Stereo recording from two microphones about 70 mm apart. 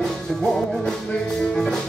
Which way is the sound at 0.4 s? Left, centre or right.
Centre.